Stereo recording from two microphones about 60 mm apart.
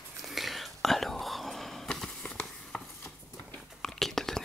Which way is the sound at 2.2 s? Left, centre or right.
Centre.